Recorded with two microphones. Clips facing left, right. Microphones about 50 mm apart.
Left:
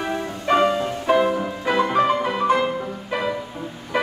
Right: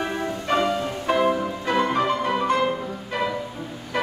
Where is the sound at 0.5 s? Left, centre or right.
Left.